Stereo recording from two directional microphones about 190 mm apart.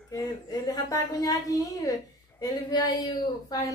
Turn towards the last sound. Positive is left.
turn(degrees=20)  # may be behind; listen again after turning